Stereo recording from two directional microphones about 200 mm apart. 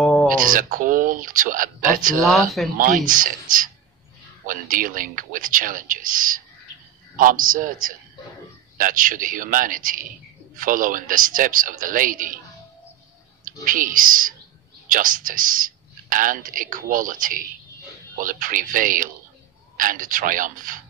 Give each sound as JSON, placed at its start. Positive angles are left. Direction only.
{"t": 0.0, "sound": "a sound", "side_deg": 0}
{"t": 0.3, "sound": "speech", "side_deg": -45}
{"t": 2.2, "sound": "speech", "side_deg": 0}
{"t": 2.8, "sound": "speech", "side_deg": -45}
{"t": 13.4, "sound": "speech", "side_deg": -40}